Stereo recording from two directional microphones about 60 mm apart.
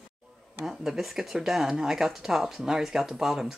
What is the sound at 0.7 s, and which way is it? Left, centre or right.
Speech, centre.